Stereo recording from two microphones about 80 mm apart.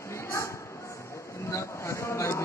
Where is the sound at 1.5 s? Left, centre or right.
Left.